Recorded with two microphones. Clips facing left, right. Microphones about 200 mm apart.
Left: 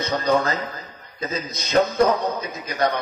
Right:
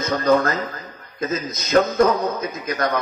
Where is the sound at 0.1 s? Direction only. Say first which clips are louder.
Right 3 dB; 50° right (ahead or behind).